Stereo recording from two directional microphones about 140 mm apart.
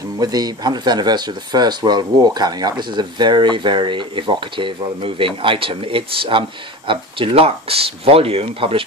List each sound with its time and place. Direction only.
0.2 s speech: 30° right (ahead or behind)